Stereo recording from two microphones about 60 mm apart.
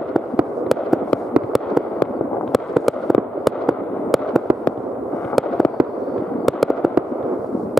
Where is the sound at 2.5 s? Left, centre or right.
Centre.